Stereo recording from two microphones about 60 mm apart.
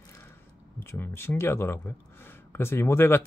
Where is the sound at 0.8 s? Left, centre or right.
Left.